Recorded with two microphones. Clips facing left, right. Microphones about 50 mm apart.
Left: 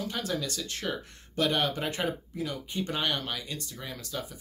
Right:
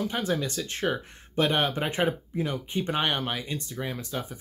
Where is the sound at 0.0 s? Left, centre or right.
Right.